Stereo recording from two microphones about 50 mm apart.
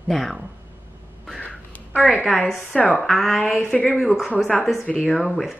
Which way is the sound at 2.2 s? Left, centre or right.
Centre.